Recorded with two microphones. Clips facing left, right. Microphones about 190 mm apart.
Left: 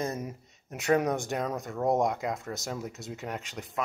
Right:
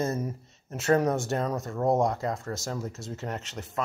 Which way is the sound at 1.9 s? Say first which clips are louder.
Right 2 dB; 20° left (ahead or behind).